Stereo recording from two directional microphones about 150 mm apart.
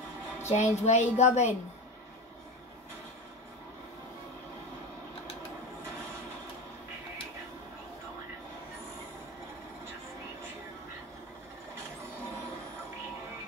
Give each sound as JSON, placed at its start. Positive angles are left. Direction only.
{"t": 0.5, "sound": "a woman's voice", "side_deg": 50}